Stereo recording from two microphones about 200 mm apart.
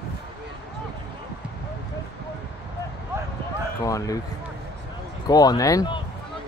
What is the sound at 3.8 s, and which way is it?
Basketball bounce, 15° left (ahead or behind).